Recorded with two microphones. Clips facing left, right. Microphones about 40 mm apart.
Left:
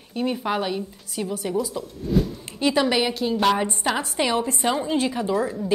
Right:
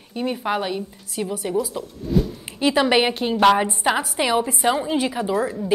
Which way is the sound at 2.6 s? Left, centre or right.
Centre.